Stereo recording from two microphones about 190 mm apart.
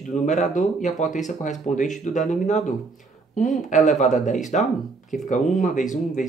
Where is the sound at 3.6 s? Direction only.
40° left (ahead or behind).